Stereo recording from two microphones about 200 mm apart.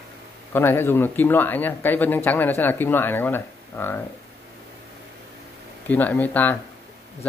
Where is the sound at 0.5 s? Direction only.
10° left (ahead or behind).